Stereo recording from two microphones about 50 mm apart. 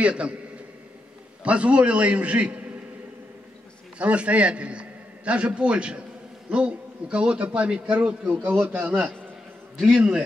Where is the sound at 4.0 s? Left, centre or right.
Right.